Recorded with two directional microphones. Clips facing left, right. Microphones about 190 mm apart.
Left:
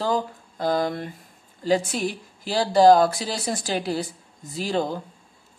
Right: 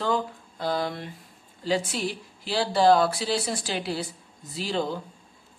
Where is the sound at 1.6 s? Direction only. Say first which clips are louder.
Left 4 dB; 45° left (ahead or behind).